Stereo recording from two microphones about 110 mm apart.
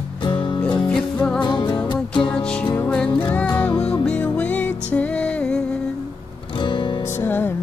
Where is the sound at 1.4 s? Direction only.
45° left (ahead or behind).